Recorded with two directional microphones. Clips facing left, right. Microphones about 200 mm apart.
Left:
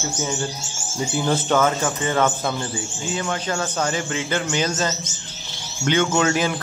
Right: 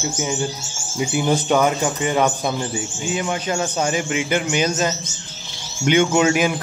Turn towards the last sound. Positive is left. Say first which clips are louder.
# right 3 dB
turn(degrees=-15)  # may be behind; listen again after turning